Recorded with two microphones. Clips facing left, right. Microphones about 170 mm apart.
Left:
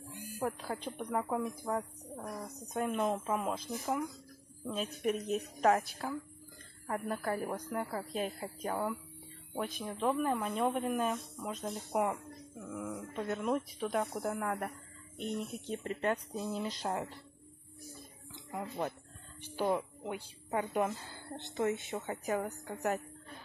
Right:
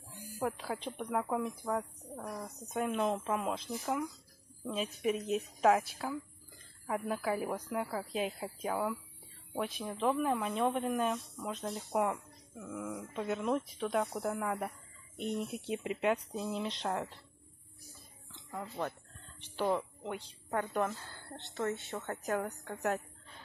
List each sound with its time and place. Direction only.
0.4 s speech: centre (ahead or behind)
18.3 s speech: 15° left (ahead or behind)
22.0 s speech: 5° left (ahead or behind)